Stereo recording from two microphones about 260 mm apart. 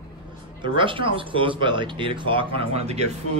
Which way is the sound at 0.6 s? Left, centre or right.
Centre.